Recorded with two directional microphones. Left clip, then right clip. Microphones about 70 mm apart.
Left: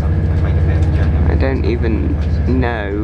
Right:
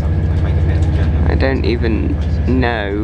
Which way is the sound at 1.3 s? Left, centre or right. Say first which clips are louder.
Right 2 dB; right.